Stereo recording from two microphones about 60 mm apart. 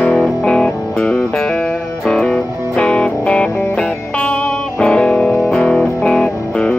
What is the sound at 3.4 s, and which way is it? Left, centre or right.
Music, left.